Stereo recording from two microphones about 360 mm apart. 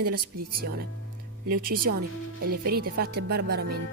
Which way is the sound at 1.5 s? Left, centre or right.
Right.